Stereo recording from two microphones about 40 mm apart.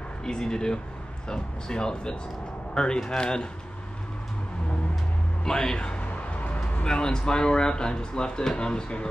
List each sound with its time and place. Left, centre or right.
0.2 s speech: centre
5.4 s music: centre; by 6.9 s left
6.9 s speech: centre